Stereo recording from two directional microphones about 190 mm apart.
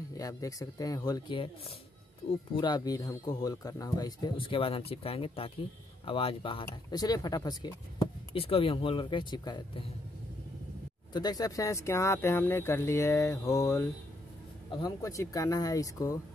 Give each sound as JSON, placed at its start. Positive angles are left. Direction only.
{"t": 0.2, "sound": "speech", "side_deg": 20}
{"t": 11.1, "sound": "speech", "side_deg": 20}